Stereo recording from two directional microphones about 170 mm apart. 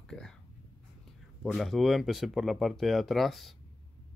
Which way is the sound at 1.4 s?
Centre (ahead or behind).